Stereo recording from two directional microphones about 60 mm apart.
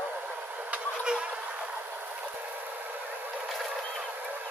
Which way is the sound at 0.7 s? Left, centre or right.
Centre.